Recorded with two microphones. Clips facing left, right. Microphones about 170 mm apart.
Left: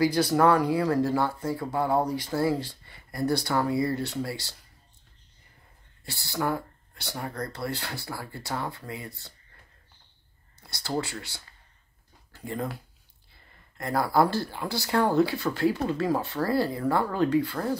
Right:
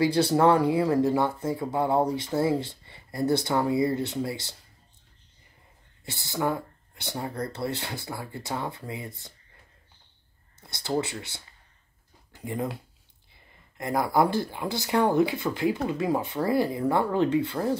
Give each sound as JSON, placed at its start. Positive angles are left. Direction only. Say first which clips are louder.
{"t": 0.0, "sound": "speech", "louder": "right 1 dB", "side_deg": -25}
{"t": 6.0, "sound": "speech", "louder": "right 1 dB", "side_deg": -20}
{"t": 10.6, "sound": "speech", "louder": "right 2 dB", "side_deg": -20}